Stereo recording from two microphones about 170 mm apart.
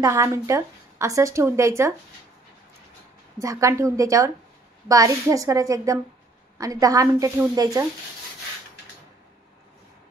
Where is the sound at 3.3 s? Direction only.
20° right (ahead or behind).